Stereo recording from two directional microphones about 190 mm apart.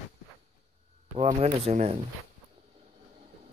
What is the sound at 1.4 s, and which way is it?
Speech, 35° right (ahead or behind).